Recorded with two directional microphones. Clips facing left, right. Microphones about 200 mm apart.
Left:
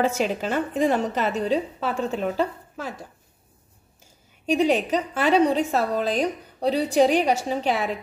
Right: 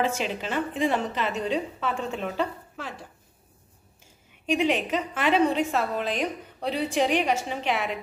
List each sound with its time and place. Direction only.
0.0 s a woman's voice: 45° left (ahead or behind)
4.5 s a woman's voice: 40° left (ahead or behind)